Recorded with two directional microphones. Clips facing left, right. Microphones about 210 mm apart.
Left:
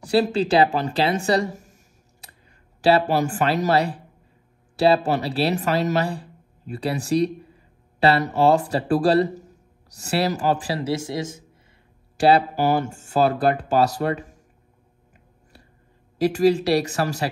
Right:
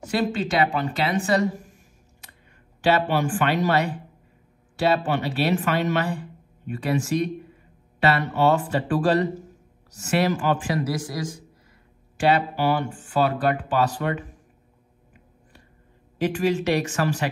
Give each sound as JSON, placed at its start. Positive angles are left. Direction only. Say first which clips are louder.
{"t": 0.1, "sound": "a man's voice", "louder": "left 5 dB", "side_deg": 35}
{"t": 2.8, "sound": "a man's voice", "louder": "left 3 dB", "side_deg": 40}
{"t": 12.2, "sound": "a man's voice", "louder": "left 4 dB", "side_deg": 35}
{"t": 16.2, "sound": "a man's voice", "louder": "left 5 dB", "side_deg": 40}